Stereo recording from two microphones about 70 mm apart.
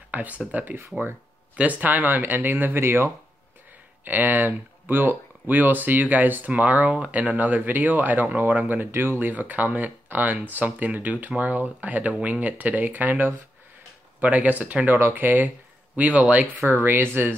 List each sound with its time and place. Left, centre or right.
0.1 s speech: right
16.5 s speech: right